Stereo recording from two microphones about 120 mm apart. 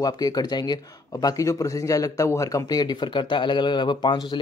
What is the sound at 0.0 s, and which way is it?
A man's voice, 30° left (ahead or behind).